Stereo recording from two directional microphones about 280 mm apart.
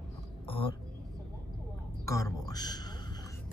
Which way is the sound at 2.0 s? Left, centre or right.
Centre.